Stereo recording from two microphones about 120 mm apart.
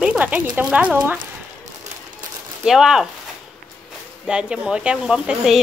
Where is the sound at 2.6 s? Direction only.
5° right (ahead or behind).